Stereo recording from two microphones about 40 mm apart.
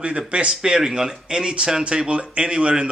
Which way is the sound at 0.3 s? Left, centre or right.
Right.